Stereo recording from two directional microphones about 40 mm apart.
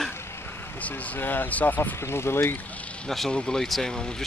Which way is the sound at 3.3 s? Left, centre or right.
Left.